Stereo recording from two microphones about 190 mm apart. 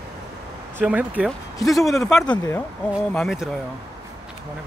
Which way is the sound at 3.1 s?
Centre (ahead or behind).